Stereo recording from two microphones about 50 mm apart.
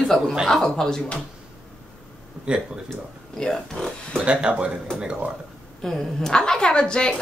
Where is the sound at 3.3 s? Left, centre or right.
Centre.